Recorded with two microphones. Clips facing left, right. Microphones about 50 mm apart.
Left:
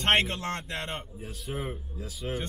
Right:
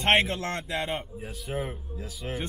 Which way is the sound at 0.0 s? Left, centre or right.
Centre.